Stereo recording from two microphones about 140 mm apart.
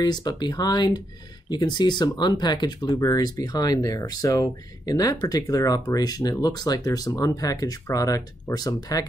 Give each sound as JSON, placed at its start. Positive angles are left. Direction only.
{"t": 0.0, "sound": "speech", "side_deg": 30}